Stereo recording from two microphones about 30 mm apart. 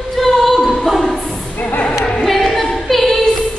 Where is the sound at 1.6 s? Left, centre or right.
Left.